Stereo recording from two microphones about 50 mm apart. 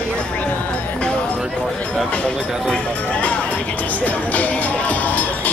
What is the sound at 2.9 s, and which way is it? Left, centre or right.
Music, left.